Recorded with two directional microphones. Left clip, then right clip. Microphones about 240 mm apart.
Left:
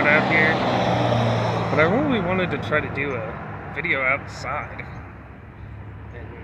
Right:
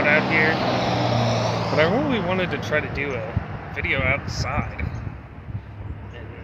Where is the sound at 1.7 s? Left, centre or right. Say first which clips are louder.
Left 1 dB; centre.